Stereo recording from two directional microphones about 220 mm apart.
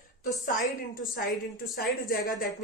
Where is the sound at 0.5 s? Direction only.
40° left (ahead or behind).